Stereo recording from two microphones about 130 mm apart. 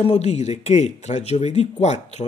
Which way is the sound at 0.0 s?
60° left (ahead or behind).